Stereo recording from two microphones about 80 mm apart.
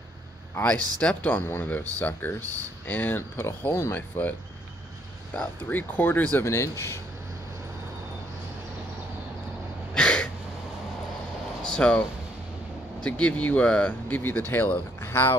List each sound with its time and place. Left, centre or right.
0.6 s speech: centre
1.4 s speech: left
5.7 s speech: left
6.4 s speech: left
9.9 s a sound: centre
11.6 s a sound: centre
13.0 s speech: centre; by 15.3 s left